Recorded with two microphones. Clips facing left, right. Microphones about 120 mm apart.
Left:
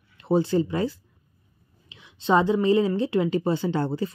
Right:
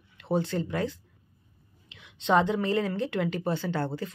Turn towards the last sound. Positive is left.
turn(degrees=15)  # may be behind; listen again after turning